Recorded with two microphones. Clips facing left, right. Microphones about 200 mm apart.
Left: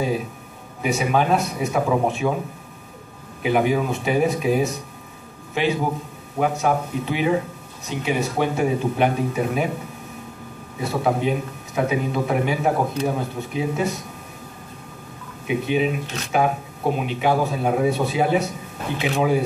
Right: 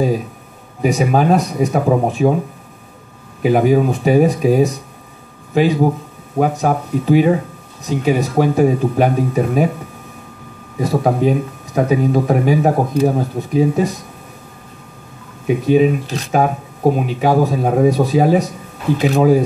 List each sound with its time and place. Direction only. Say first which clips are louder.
0.8 s speech: right 6 dB; 40° right (ahead or behind)
3.4 s speech: right 7 dB; 40° right (ahead or behind)
10.8 s speech: right 6 dB; 40° right (ahead or behind)
15.4 s speech: right 8 dB; 40° right (ahead or behind)